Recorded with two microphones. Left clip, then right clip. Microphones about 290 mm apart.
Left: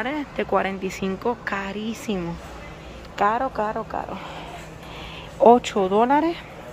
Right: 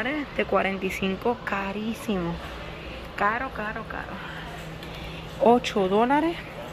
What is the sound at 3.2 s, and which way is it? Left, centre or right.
Speech, centre.